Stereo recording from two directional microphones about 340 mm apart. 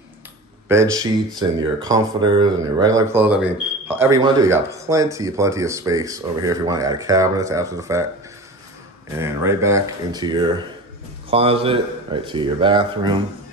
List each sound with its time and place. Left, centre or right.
0.7 s speech: centre
9.2 s speech: centre